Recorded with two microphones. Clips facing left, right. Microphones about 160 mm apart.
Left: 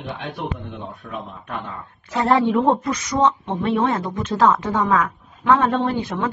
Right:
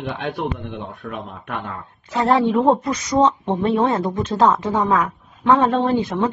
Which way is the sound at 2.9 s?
25° right (ahead or behind).